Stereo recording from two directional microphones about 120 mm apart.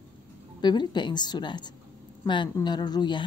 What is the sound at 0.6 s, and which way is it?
Speech, 40° left (ahead or behind).